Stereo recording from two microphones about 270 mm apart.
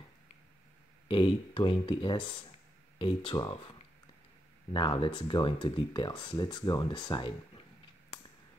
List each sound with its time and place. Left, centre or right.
1.0 s speech: centre
4.7 s speech: centre